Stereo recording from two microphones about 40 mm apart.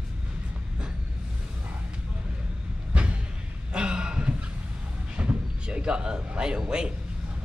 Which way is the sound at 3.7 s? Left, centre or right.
Right.